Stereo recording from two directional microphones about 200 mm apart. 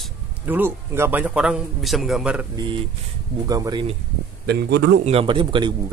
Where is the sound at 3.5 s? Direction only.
20° right (ahead or behind).